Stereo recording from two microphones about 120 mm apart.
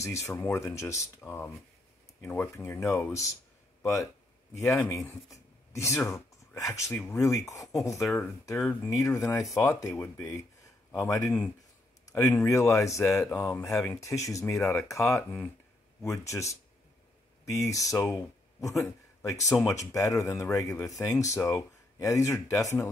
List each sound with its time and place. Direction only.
0.0 s speech: 25° left (ahead or behind)
17.9 s speech: 15° left (ahead or behind)
18.6 s a man's voice: 25° left (ahead or behind)